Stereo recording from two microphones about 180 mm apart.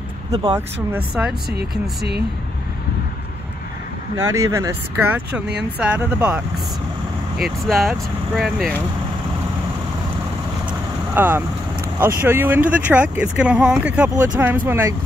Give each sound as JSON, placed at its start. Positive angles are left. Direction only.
{"t": 0.3, "sound": "speech", "side_deg": -30}
{"t": 0.9, "sound": "speech", "side_deg": -5}
{"t": 1.6, "sound": "speech", "side_deg": -65}
{"t": 4.3, "sound": "speech", "side_deg": -15}
{"t": 11.1, "sound": "speech", "side_deg": -10}